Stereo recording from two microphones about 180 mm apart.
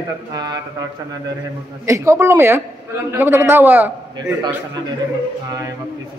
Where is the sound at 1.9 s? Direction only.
15° right (ahead or behind).